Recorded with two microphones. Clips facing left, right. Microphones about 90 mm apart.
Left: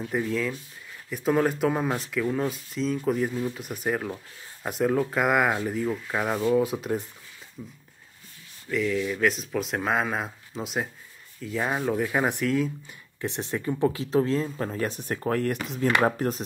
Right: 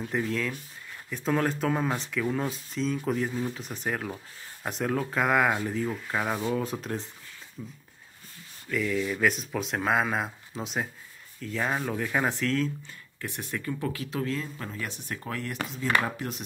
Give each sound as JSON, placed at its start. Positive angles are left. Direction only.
{"t": 0.0, "sound": "speech", "side_deg": 5}
{"t": 13.2, "sound": "speech", "side_deg": 25}